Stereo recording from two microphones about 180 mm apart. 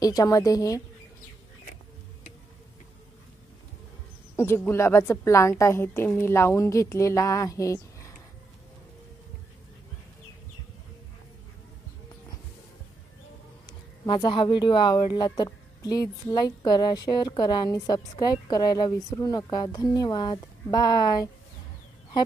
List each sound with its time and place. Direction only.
0.0 s speech: 20° left (ahead or behind)
4.4 s a woman's voice: 10° left (ahead or behind)
13.7 s speech: 25° left (ahead or behind)